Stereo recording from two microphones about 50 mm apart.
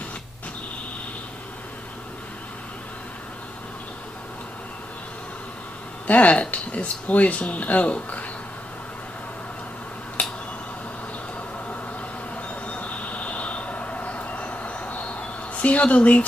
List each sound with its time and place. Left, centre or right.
6.0 s speech: left
12.6 s train: left